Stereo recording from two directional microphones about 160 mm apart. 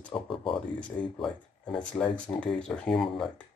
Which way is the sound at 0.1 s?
30° left (ahead or behind).